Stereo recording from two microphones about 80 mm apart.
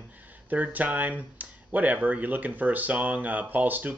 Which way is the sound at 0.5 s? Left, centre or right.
Centre.